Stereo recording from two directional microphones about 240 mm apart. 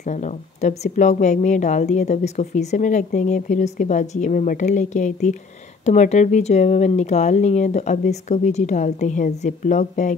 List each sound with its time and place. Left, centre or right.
0.0 s a woman's voice: left